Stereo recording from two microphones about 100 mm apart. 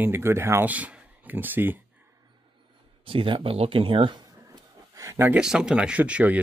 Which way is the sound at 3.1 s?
60° right (ahead or behind).